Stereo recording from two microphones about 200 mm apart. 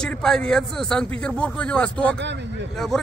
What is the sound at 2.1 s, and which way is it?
Speech, 60° right (ahead or behind).